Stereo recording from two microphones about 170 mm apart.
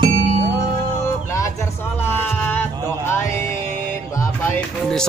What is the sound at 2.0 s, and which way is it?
Music, 10° left (ahead or behind).